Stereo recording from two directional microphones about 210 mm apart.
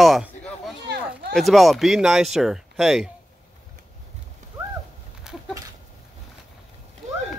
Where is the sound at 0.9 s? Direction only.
55° right (ahead or behind).